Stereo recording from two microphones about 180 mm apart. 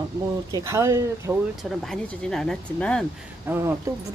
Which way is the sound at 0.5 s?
15° right (ahead or behind).